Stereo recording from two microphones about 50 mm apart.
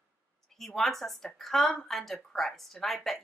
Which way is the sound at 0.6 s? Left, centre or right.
Centre.